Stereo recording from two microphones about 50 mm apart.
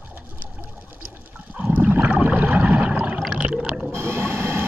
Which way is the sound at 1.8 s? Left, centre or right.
Right.